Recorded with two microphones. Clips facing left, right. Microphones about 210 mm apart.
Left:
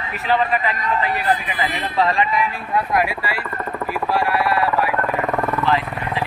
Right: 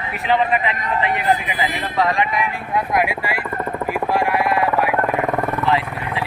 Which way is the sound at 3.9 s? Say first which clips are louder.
Right 1 dB; 15° right (ahead or behind).